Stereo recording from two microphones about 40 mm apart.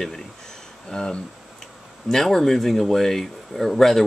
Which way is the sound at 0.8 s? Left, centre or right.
Left.